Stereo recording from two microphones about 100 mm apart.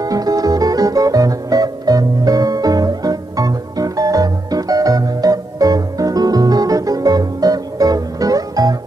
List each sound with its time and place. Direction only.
0.0 s music: 40° right (ahead or behind)